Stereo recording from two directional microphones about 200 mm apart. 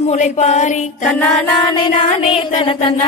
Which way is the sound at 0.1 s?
35° left (ahead or behind).